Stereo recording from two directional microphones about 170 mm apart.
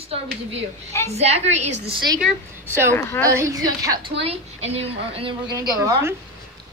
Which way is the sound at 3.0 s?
15° left (ahead or behind).